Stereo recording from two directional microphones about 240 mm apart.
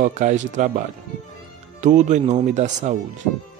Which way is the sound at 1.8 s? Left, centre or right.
Right.